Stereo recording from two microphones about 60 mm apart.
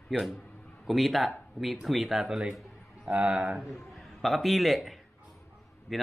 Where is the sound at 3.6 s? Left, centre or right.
Centre.